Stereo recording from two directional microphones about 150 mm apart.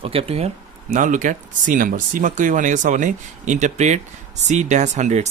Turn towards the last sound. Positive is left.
turn(degrees=-50)  # may be behind; listen again after turning